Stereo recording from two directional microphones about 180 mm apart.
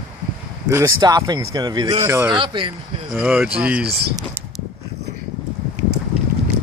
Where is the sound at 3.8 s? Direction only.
60° right (ahead or behind).